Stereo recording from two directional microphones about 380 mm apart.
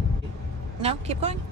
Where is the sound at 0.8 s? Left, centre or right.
Centre.